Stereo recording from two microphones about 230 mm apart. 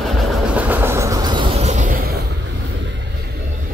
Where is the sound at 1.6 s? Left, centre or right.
Right.